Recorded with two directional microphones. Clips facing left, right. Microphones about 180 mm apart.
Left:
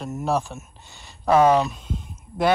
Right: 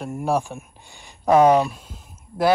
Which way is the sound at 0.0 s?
15° right (ahead or behind).